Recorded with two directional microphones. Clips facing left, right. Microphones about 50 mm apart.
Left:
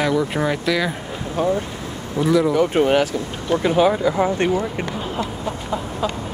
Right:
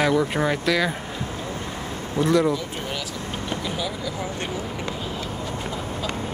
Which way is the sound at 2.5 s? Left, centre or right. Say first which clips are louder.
Left 12 dB; left.